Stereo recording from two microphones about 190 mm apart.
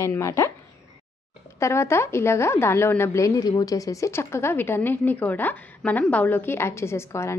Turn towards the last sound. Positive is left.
turn(degrees=15)  # may be behind; listen again after turning